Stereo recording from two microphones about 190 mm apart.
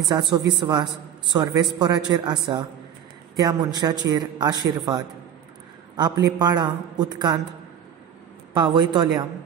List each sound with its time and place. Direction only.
0.1 s a man's voice: 20° right (ahead or behind)
8.5 s a man's voice: 25° right (ahead or behind)